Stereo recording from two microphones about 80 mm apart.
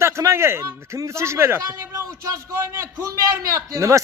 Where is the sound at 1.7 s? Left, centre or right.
Right.